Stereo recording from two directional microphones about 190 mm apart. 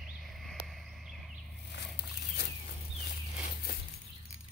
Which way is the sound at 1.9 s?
60° left (ahead or behind).